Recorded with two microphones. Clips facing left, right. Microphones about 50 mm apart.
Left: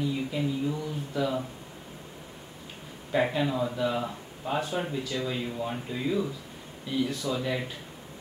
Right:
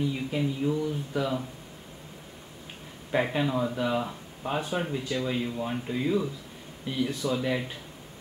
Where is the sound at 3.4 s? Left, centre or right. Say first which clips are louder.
Even; centre; by 5.3 s right.